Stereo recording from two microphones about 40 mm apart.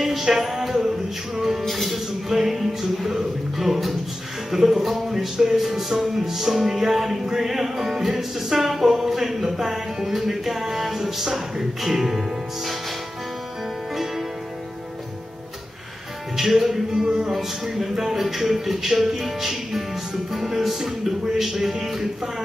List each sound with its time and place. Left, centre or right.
0.0 s music: centre
16.3 s music: centre
17.0 s music: centre
17.3 s music: centre